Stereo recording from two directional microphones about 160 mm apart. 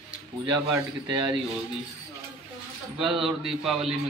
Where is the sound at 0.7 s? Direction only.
30° right (ahead or behind).